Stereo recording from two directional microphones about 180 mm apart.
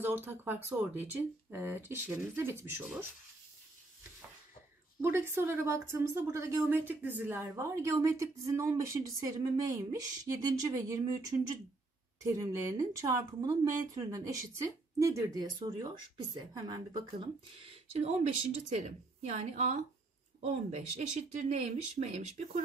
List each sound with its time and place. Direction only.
0.0 s a woman's voice: 10° right (ahead or behind)
5.0 s a woman's voice: 10° right (ahead or behind)
17.9 s speech: 35° right (ahead or behind)